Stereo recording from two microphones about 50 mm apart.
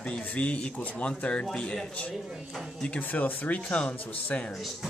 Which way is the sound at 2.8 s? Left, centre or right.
Left.